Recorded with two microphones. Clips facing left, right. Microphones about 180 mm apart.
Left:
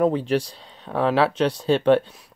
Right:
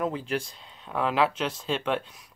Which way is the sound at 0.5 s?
30° left (ahead or behind).